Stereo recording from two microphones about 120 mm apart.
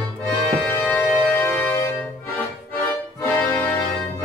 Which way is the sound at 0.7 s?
20° left (ahead or behind).